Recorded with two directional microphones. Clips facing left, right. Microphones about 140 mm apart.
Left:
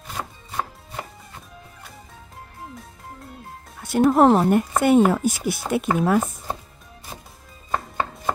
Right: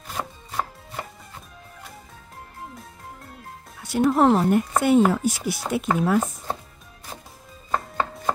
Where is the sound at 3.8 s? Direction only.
50° left (ahead or behind).